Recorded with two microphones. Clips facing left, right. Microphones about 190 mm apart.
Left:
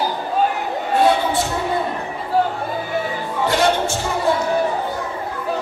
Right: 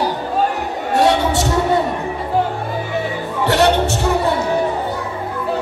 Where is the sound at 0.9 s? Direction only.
80° right.